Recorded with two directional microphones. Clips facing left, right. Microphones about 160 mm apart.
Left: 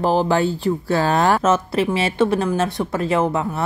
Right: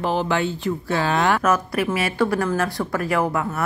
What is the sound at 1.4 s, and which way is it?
Speech, 25° left (ahead or behind).